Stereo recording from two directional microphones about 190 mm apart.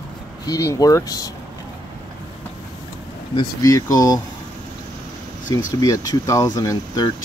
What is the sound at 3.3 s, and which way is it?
Speech, 15° left (ahead or behind).